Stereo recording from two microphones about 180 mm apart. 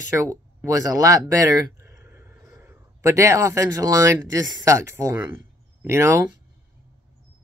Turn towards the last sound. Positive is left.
turn(degrees=-15)  # may be behind; listen again after turning